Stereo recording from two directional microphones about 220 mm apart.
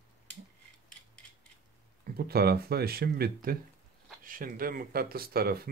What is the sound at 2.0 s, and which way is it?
Speech, 45° right (ahead or behind).